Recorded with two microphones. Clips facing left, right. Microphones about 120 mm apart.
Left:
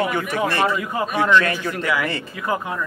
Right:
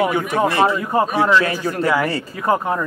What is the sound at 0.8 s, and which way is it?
Speech, 35° right (ahead or behind).